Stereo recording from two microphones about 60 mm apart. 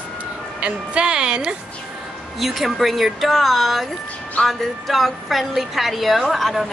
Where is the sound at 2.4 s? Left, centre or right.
Centre.